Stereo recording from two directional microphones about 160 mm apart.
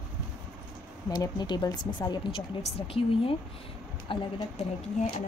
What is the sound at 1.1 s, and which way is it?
A woman's voice, 25° left (ahead or behind).